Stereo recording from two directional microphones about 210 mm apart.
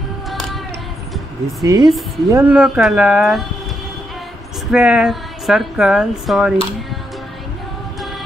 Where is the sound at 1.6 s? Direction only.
15° right (ahead or behind).